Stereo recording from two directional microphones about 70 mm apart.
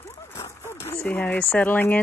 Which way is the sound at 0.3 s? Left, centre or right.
Left.